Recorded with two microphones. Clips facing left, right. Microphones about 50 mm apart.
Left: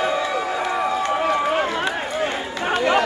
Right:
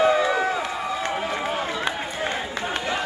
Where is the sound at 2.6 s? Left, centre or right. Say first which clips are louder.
Left 11 dB; left.